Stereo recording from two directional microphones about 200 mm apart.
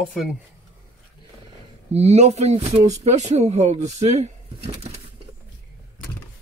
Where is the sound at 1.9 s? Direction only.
30° right (ahead or behind).